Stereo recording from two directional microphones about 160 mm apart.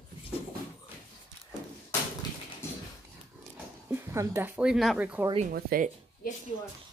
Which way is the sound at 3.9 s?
15° right (ahead or behind).